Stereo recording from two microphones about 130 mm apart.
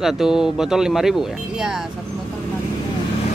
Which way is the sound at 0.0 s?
5° right (ahead or behind).